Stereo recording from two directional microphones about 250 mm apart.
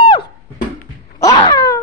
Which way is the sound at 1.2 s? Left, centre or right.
Centre.